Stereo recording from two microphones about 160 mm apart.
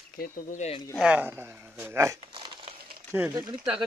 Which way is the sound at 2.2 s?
30° right (ahead or behind).